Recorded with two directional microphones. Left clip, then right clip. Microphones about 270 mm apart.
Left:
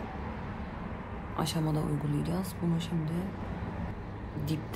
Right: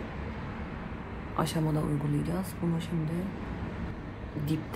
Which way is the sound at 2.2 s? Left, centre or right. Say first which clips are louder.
Right 1 dB; centre.